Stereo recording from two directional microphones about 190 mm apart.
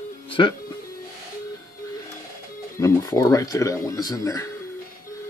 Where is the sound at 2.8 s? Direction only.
15° left (ahead or behind).